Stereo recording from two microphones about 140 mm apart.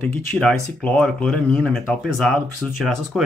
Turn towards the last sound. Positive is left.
turn(degrees=0)  # may be behind; listen again after turning